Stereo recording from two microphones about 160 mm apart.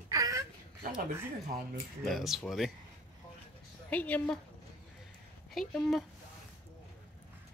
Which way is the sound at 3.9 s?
10° left (ahead or behind).